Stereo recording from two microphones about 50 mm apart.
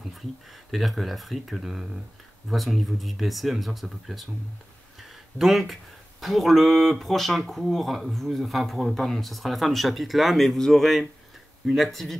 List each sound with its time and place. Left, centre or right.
0.7 s speech: centre
5.0 s a sound: centre
6.2 s speech: centre